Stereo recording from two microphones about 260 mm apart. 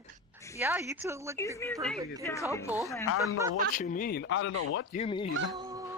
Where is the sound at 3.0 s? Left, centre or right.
Left.